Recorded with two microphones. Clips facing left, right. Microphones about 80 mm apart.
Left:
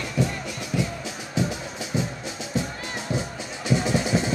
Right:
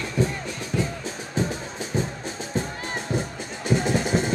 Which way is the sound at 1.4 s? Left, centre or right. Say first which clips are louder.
Even; right.